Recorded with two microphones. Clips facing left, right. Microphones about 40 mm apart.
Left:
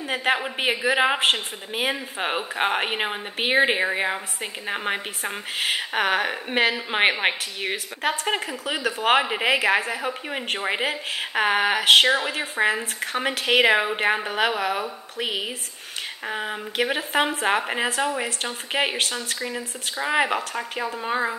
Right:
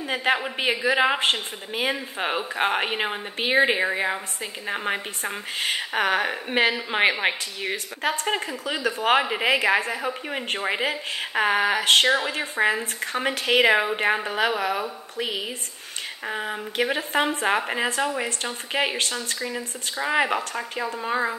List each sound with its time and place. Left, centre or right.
0.0 s a man's voice: centre
6.9 s a woman's voice: centre
11.4 s a sound: left
12.1 s a woman's voice: centre
15.1 s a sound: left
16.3 s a woman's voice: centre